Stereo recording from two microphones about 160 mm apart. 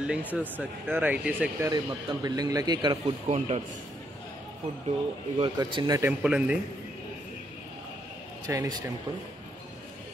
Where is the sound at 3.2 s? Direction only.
40° right (ahead or behind).